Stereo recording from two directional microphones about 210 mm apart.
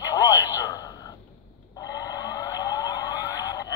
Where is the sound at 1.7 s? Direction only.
20° left (ahead or behind).